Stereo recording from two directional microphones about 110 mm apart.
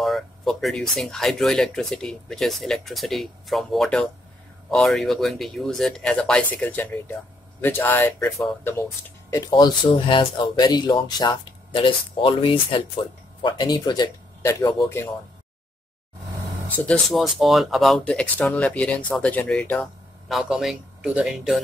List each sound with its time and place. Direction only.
0.0 s speech: centre (ahead or behind); by 8.8 s 25° left (ahead or behind)
9.5 s speech: 45° left (ahead or behind)
11.7 s speech: 50° left (ahead or behind)
16.8 s speech: 5° left (ahead or behind)
18.0 s speech: 10° left (ahead or behind)
20.2 s speech: centre (ahead or behind)